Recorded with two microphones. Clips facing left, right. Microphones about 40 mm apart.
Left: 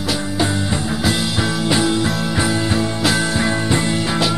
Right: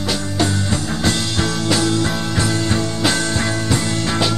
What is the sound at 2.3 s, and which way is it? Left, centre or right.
Music, centre.